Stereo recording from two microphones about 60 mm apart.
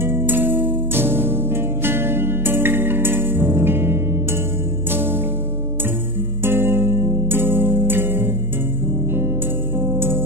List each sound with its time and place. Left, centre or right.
0.0 s music: right
6.4 s music: right
9.8 s music: right